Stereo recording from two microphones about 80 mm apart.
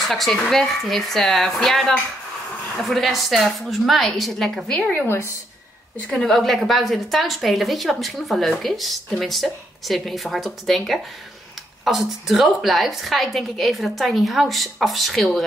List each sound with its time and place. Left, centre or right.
0.0 s a woman's voice: centre
4.9 s a woman's voice: left
6.0 s a woman's voice: centre